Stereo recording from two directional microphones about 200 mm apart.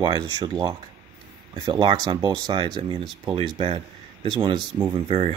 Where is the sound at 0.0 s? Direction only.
20° right (ahead or behind).